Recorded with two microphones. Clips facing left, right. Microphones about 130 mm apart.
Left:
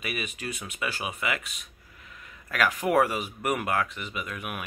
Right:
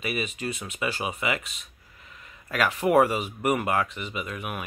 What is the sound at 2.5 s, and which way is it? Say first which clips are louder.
Speech: right 3 dB; 5° right (ahead or behind).